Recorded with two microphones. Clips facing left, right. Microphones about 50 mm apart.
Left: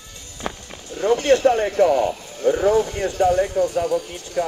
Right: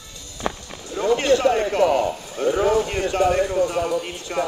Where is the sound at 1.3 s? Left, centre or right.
Left.